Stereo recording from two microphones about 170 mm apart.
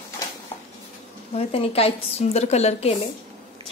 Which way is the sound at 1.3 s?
35° left (ahead or behind).